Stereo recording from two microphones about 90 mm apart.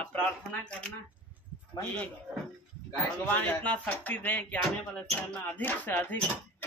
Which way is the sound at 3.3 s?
20° left (ahead or behind).